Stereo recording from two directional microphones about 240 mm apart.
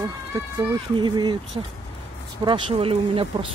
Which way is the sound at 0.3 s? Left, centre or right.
Centre.